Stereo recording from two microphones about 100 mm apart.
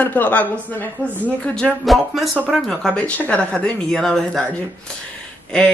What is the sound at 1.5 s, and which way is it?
Speech, 5° left (ahead or behind).